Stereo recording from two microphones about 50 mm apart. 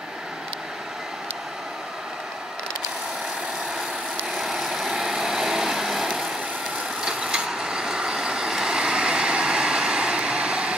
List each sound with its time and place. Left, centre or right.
4.4 s vehicle: centre; by 10.8 s right